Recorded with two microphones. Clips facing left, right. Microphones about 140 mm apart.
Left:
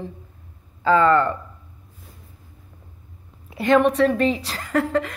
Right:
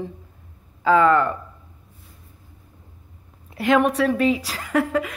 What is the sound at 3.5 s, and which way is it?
A woman's voice, 5° right (ahead or behind).